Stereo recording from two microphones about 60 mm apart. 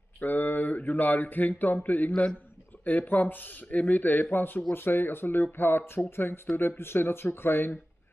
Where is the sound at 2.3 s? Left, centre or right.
Left.